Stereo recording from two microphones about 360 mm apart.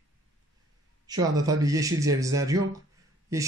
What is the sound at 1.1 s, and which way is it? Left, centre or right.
Speech, centre.